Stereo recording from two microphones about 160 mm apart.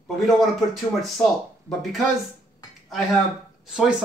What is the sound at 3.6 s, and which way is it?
Speech, 5° right (ahead or behind).